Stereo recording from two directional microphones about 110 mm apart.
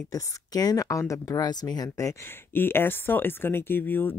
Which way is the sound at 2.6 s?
20° left (ahead or behind).